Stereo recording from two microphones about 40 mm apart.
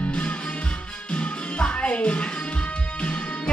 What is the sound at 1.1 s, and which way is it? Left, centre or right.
Music, left.